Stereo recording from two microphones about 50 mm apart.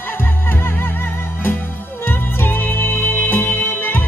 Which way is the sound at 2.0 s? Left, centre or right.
Left.